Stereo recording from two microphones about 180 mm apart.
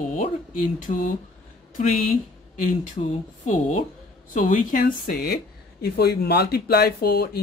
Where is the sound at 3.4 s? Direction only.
40° left (ahead or behind).